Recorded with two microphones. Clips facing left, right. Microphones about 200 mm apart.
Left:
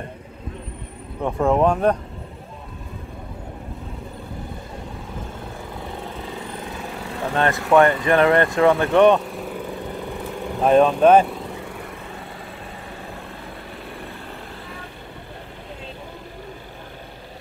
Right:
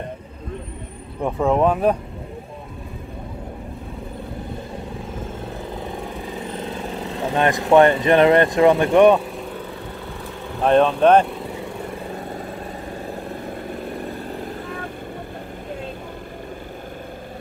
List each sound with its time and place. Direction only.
1.2 s speech: centre (ahead or behind)
7.2 s speech: 15° right (ahead or behind)
10.6 s speech: 5° left (ahead or behind)